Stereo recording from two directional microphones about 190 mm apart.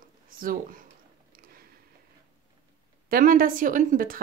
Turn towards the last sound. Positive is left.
turn(degrees=-45)  # may be behind; listen again after turning